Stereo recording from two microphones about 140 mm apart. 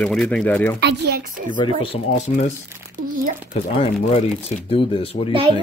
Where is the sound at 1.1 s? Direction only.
75° right (ahead or behind).